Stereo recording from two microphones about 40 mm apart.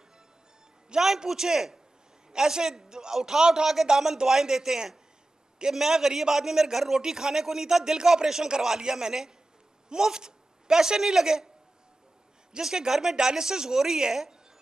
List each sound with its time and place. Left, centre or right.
0.8 s a man's voice: centre
12.5 s speech: centre